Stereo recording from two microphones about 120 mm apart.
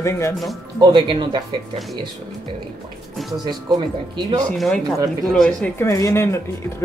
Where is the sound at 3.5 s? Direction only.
35° right (ahead or behind).